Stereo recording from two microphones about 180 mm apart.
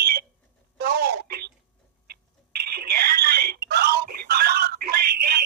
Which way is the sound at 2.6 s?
60° right (ahead or behind).